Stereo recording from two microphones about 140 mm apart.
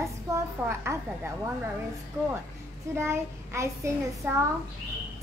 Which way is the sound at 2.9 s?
20° right (ahead or behind).